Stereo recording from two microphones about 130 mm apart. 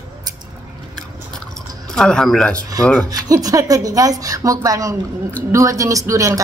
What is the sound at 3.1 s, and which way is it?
A woman's voice, 30° right (ahead or behind).